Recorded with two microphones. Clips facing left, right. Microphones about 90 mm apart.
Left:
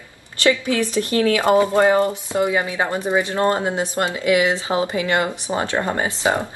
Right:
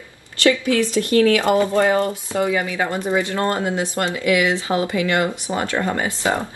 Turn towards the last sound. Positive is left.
turn(degrees=25)  # may be behind; listen again after turning